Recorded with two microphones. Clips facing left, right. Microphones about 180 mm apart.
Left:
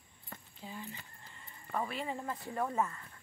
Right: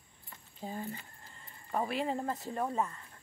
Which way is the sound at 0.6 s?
45° right (ahead or behind).